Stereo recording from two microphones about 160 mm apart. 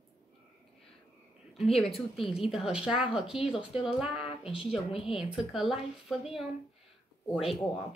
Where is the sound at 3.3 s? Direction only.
35° left (ahead or behind).